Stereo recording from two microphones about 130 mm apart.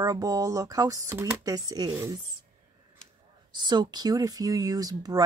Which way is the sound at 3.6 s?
35° right (ahead or behind).